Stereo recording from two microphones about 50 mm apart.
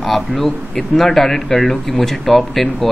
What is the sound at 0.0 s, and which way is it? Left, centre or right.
Speech, centre.